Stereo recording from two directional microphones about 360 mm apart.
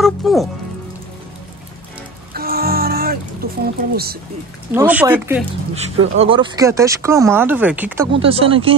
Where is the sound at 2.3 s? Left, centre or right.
Right.